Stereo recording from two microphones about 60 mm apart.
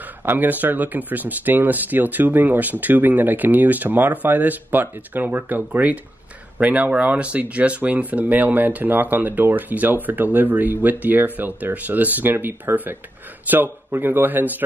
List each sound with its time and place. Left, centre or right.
0.0 s speech: right